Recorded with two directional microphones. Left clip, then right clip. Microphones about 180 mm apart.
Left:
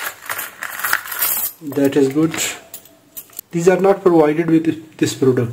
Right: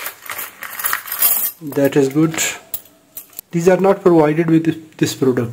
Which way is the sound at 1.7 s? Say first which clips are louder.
Right 1 dB; 30° right (ahead or behind).